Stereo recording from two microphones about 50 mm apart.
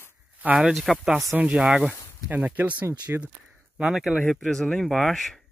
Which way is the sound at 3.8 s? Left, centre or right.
Centre.